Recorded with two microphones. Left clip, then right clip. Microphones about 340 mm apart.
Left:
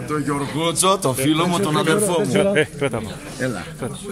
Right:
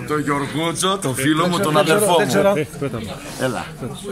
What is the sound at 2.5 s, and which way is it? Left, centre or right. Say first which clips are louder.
Speech: left 2 dB; left.